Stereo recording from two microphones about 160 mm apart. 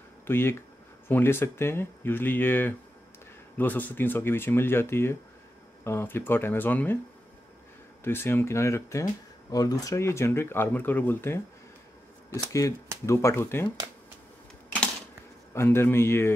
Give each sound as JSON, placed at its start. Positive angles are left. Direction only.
{"t": 0.3, "sound": "speech", "side_deg": 15}
{"t": 8.0, "sound": "speech", "side_deg": 15}
{"t": 13.0, "sound": "speech", "side_deg": 20}
{"t": 15.5, "sound": "speech", "side_deg": 15}